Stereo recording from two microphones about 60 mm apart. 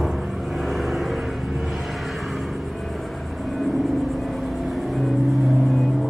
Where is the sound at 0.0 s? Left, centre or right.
Centre.